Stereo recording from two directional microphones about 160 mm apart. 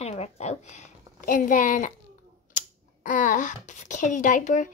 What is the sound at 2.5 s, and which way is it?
Speech, 55° left (ahead or behind).